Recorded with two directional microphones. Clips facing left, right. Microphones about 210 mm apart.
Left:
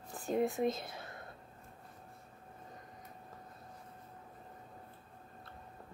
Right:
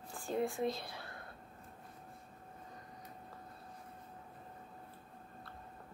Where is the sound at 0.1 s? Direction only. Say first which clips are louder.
Left 3 dB; 20° left (ahead or behind).